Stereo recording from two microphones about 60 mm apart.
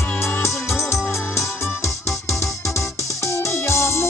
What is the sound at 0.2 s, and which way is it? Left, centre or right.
Music, left.